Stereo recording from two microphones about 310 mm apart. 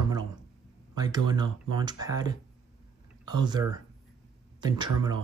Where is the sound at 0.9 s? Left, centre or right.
Centre.